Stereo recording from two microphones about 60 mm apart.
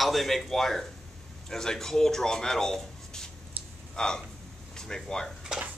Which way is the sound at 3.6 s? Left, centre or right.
Right.